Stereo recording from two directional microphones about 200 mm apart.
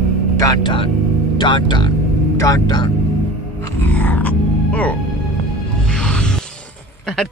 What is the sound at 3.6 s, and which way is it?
Music, 10° left (ahead or behind).